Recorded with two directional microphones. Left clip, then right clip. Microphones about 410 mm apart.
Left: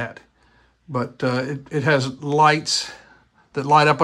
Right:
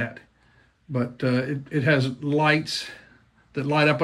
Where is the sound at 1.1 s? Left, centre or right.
Centre.